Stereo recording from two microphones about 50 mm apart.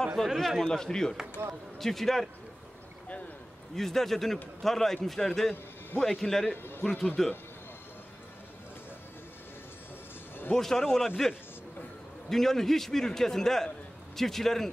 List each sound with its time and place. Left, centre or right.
0.2 s a man's voice: centre
1.4 s speech: right
1.8 s a man's voice: centre
3.7 s a man's voice: centre
10.5 s a man's voice: centre
12.3 s a man's voice: centre